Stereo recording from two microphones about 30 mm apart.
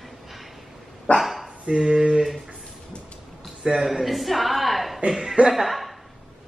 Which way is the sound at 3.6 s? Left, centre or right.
Centre.